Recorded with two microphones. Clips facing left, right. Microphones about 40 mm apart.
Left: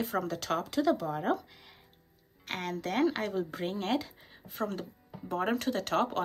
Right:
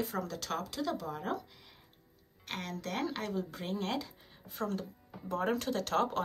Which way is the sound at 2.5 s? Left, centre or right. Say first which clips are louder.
Left 5 dB; left.